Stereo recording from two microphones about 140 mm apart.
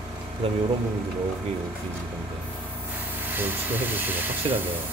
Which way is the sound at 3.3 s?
15° right (ahead or behind).